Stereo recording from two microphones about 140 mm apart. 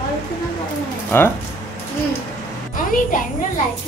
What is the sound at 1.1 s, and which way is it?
Speech, 15° left (ahead or behind).